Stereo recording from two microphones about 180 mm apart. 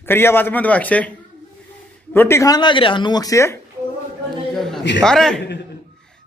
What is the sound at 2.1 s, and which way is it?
A man's voice, 15° left (ahead or behind).